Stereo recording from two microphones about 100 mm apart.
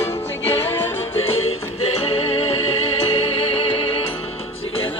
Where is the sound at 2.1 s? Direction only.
75° left (ahead or behind).